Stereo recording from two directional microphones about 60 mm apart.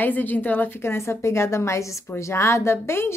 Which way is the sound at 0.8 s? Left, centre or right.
Left.